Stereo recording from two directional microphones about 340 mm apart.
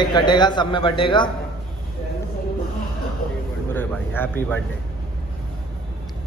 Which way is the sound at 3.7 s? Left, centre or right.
Centre.